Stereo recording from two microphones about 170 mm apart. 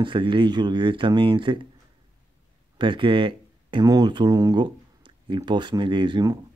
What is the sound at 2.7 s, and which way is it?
Speech, 30° right (ahead or behind).